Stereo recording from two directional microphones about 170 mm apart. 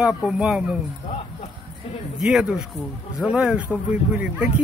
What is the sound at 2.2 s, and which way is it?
Speech, 5° right (ahead or behind).